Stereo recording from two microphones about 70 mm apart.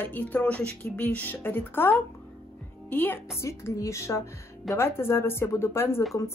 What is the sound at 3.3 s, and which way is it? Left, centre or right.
A woman's voice, left.